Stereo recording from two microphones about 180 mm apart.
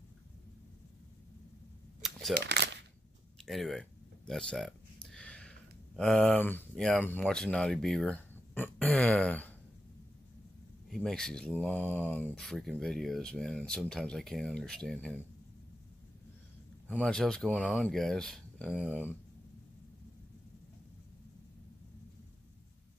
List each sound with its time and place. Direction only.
2.0 s a sound: centre (ahead or behind)
2.3 s shuffling cards: 65° right (ahead or behind)
3.3 s speech: centre (ahead or behind)
4.3 s a sound: 5° left (ahead or behind)
5.9 s speech: 5° left (ahead or behind)
10.9 s speech: 5° left (ahead or behind)
16.8 s speech: 5° left (ahead or behind)
18.9 s speech: 10° left (ahead or behind)